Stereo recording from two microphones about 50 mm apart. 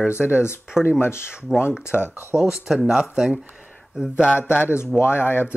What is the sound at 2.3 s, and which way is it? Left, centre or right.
Speech, centre.